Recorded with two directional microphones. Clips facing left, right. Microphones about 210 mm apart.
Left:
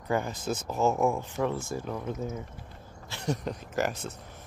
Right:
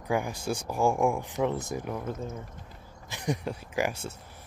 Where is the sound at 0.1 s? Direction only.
10° right (ahead or behind).